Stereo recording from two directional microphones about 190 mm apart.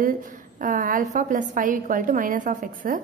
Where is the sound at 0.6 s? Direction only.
45° right (ahead or behind).